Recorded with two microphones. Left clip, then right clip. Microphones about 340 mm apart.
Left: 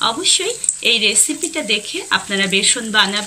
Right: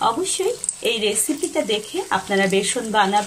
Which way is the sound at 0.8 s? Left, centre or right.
Right.